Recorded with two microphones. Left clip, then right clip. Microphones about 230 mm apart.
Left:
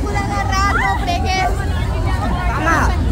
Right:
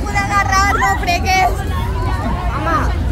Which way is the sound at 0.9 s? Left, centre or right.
Right.